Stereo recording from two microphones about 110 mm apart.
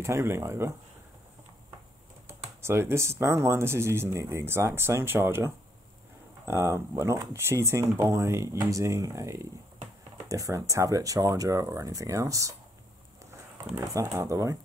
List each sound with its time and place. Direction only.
0.0 s speech: 25° right (ahead or behind)
2.6 s speech: 25° right (ahead or behind)
13.9 s speech: 30° right (ahead or behind)